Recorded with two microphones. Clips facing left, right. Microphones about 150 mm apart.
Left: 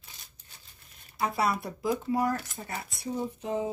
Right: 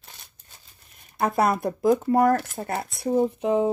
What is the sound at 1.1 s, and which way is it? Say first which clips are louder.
Speech: right 6 dB; 50° right (ahead or behind).